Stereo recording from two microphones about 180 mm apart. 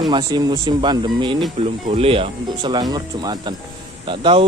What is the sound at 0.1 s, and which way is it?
Speech, 25° right (ahead or behind).